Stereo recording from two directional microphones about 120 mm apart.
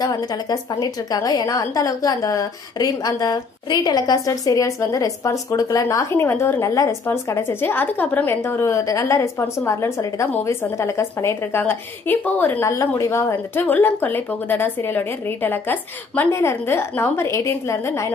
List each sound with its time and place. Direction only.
0.0 s a woman's voice: 35° left (ahead or behind)